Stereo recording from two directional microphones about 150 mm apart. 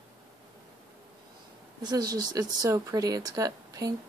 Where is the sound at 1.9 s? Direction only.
25° right (ahead or behind).